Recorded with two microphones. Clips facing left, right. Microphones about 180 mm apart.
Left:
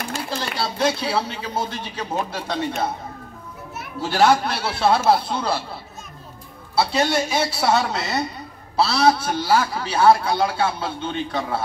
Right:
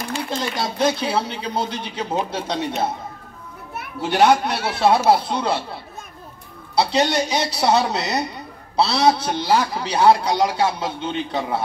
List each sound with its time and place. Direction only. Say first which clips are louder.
0.3 s speech: right 2 dB; 20° right (ahead or behind)
4.0 s speech: right 1 dB; 20° right (ahead or behind)
6.8 s speech: right 1 dB; 20° right (ahead or behind)